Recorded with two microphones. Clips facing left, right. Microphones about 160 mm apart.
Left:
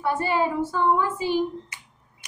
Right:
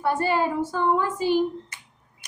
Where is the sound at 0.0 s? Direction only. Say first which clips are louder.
Right 1 dB; 40° right (ahead or behind).